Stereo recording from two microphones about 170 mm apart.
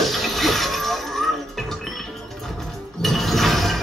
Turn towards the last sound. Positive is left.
turn(degrees=0)  # may be behind; listen again after turning